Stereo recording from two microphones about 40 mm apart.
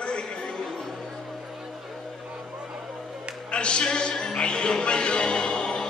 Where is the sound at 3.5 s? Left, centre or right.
Left.